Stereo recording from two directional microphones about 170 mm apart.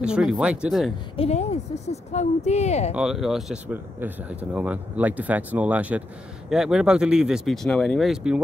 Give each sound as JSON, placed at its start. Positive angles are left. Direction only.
{"t": 0.0, "sound": "speech", "side_deg": -5}
{"t": 1.1, "sound": "speech", "side_deg": 35}
{"t": 2.9, "sound": "speech", "side_deg": -5}